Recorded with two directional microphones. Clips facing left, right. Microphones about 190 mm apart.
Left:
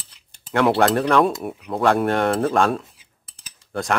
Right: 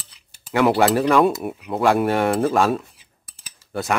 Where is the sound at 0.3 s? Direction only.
5° right (ahead or behind).